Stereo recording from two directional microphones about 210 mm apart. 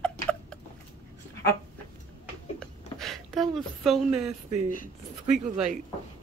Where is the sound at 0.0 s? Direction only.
5° left (ahead or behind).